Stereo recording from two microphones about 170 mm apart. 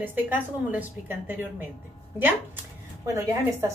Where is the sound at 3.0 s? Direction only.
15° right (ahead or behind).